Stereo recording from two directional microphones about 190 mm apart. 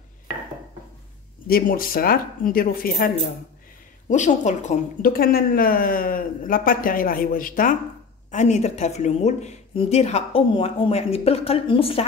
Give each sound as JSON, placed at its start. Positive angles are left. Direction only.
{"t": 1.5, "sound": "a woman's voice", "side_deg": 50}
{"t": 4.1, "sound": "a woman's voice", "side_deg": 40}